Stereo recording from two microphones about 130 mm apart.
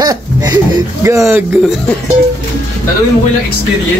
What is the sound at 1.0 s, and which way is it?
Speech, 20° right (ahead or behind).